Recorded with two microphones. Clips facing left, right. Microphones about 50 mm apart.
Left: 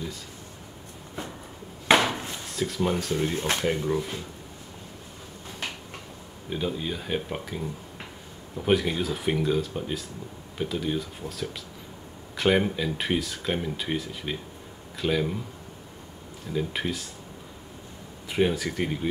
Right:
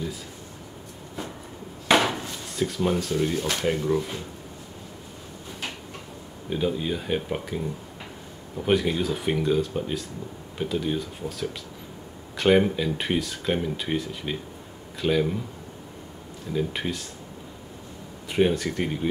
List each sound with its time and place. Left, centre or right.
2.5 s speech: centre
3.3 s speech: left
3.6 s speech: centre
6.5 s speech: centre
16.5 s speech: centre
18.3 s speech: centre